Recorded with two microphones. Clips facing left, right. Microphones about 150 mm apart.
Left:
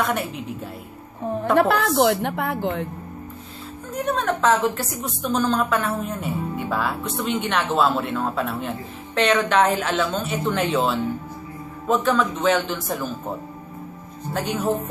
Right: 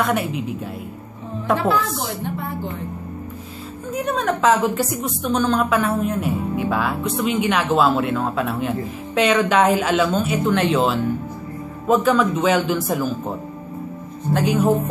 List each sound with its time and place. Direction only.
0.0 s a woman's voice: centre (ahead or behind)
1.6 s a woman's voice: 65° left (ahead or behind)
3.9 s a woman's voice: centre (ahead or behind)
14.3 s a woman's voice: 5° right (ahead or behind)